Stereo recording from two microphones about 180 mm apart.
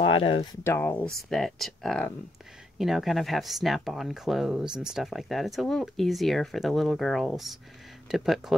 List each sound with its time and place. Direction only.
0.0 s speech: 30° left (ahead or behind)
0.7 s speech: 10° left (ahead or behind)